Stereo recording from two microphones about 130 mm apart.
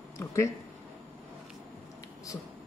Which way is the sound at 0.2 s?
20° left (ahead or behind).